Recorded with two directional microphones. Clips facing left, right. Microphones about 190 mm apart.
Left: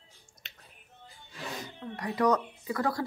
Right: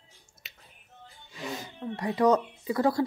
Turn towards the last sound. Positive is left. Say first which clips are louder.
# right 5 dB
turn(degrees=-25)  # may be behind; listen again after turning